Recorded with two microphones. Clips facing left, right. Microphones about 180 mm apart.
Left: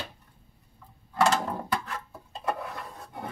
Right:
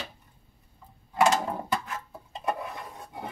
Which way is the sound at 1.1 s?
15° right (ahead or behind).